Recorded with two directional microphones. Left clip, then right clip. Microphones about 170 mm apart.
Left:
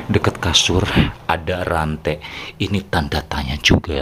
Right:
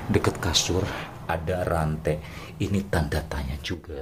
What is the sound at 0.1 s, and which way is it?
Speech, 15° left (ahead or behind).